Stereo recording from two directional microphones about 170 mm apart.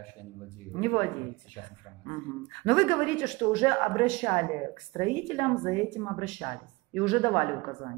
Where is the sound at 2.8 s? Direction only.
25° left (ahead or behind).